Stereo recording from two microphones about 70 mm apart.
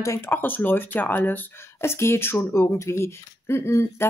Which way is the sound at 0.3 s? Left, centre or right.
Left.